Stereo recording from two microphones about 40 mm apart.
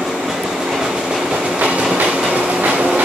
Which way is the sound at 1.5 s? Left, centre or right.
Right.